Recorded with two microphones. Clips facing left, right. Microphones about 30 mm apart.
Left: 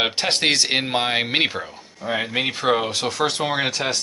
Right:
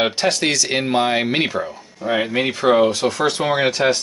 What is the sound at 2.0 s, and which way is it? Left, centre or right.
Speech, centre.